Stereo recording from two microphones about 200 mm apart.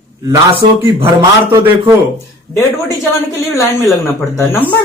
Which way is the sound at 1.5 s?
15° right (ahead or behind).